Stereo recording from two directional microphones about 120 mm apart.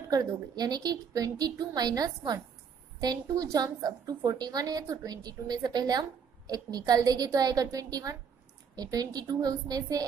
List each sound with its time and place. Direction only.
0.1 s a woman's voice: 35° right (ahead or behind)